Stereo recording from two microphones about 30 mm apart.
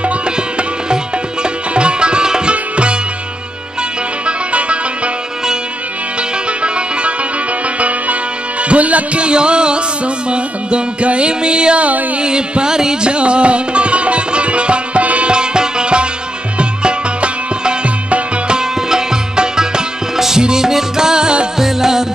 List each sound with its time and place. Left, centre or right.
1.4 s sitar: right
4.3 s music: right
6.6 s music: right
8.6 s music: right
9.2 s music: right
13.1 s music: right
15.3 s music: right
18.5 s music: right
21.5 s music: centre